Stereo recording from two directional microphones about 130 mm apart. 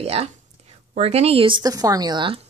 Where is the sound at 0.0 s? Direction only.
50° right (ahead or behind).